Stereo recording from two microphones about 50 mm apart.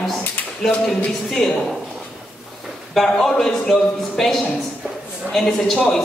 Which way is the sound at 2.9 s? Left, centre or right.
Centre.